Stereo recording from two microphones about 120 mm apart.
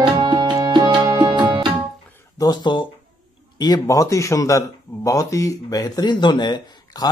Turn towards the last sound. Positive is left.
turn(degrees=35)  # may be behind; listen again after turning